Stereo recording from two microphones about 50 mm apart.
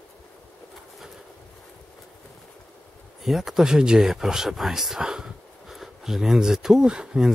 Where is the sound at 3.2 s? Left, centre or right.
Centre.